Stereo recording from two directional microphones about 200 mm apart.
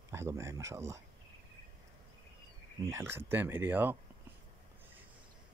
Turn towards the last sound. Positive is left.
turn(degrees=-10)  # may be behind; listen again after turning